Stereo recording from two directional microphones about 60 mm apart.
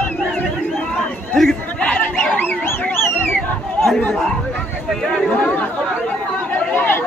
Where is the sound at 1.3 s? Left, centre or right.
Centre.